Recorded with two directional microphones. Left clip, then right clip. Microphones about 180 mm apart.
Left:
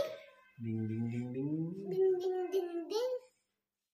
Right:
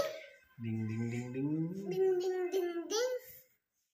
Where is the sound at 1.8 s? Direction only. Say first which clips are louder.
Left 1 dB; 5° right (ahead or behind).